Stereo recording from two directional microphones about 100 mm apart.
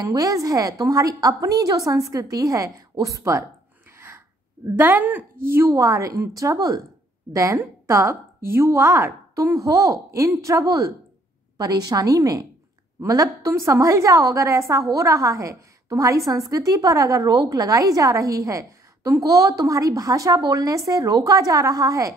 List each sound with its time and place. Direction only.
0.1 s a woman's voice: 35° right (ahead or behind)
4.7 s a woman's voice: 20° right (ahead or behind)